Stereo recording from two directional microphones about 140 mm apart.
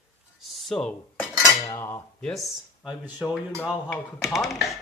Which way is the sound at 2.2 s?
Centre (ahead or behind).